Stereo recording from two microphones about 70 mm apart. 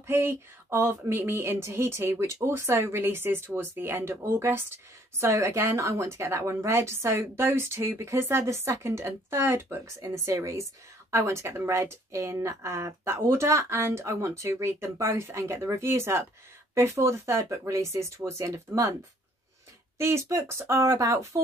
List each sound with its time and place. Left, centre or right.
0.0 s a sound: right
10.0 s a woman's voice: right
20.0 s a woman's voice: right